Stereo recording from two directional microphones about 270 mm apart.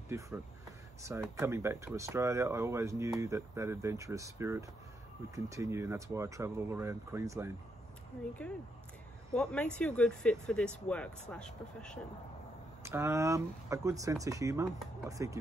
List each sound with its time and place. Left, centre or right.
0.1 s speech: centre
1.3 s speech: centre
9.3 s speech: centre
12.8 s speech: centre